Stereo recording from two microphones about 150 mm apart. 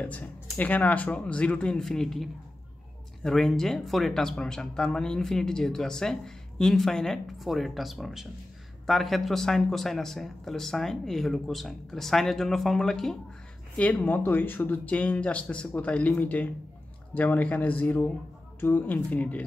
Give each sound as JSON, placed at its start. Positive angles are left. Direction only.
{"t": 0.0, "sound": "speech", "side_deg": 10}
{"t": 3.3, "sound": "speech", "side_deg": 0}